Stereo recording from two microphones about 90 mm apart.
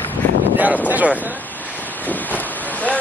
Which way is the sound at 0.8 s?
15° right (ahead or behind).